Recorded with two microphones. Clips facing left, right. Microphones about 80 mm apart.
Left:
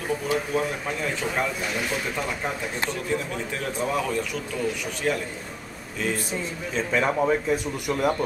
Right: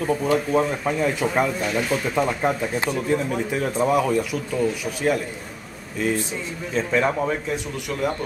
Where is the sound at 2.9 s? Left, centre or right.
Centre.